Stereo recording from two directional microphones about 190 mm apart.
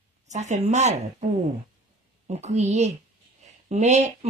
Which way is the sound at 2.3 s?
35° right (ahead or behind).